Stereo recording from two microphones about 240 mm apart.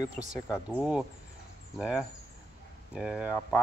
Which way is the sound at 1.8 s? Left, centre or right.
Centre.